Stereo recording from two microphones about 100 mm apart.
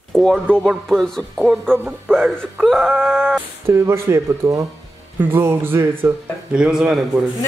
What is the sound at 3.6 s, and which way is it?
Speech, 30° right (ahead or behind).